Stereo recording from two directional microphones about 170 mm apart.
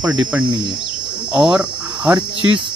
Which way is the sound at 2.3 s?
30° right (ahead or behind).